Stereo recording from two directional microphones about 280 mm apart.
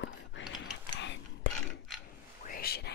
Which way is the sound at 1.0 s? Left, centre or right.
Left.